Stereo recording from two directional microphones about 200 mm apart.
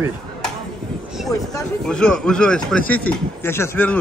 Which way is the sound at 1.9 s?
5° left (ahead or behind).